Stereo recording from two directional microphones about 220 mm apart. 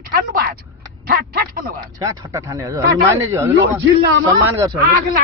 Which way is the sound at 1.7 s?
15° right (ahead or behind).